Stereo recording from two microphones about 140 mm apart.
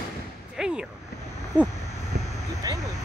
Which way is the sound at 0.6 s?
5° right (ahead or behind).